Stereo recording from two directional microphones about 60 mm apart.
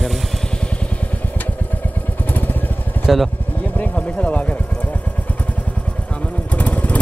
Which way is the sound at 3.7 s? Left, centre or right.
Left.